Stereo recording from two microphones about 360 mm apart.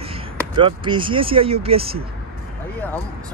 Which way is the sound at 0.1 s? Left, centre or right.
Centre.